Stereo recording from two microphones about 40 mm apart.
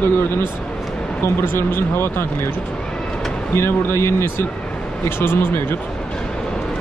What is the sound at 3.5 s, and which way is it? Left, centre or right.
Speech, left.